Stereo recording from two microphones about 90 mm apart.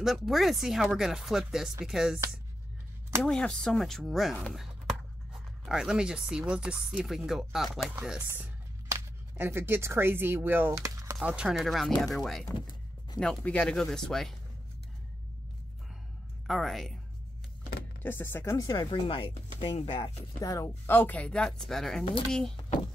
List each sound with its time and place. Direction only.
0.0 s speech: 5° right (ahead or behind)
3.2 s speech: 10° left (ahead or behind)
5.7 s speech: 5° right (ahead or behind)
8.3 s music: 25° right (ahead or behind)
9.4 s speech: 25° right (ahead or behind)
10.7 s a sound: 35° right (ahead or behind)
11.2 s speech: 10° right (ahead or behind)
16.4 s speech: centre (ahead or behind)
18.0 s speech: 25° left (ahead or behind)
18.7 s speech: 60° left (ahead or behind); by 20.1 s 85° left
20.3 s speech: 35° left (ahead or behind); by 22.0 s 5° left (ahead or behind)